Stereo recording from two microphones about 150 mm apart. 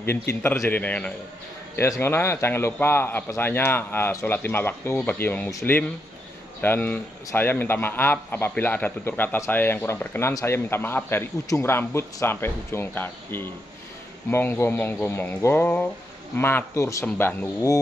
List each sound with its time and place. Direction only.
0.3 s speech: 15° left (ahead or behind)